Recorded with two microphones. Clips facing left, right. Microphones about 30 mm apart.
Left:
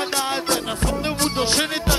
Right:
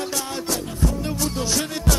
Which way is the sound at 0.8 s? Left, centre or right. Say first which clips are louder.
Even; left.